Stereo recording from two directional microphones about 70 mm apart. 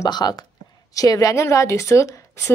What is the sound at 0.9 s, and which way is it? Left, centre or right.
Speech, left.